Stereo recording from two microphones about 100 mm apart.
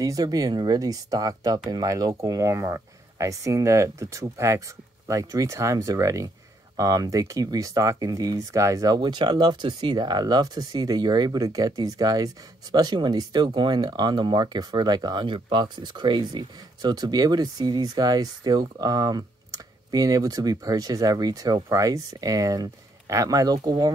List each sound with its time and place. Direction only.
0.0 s speech: 35° right (ahead or behind)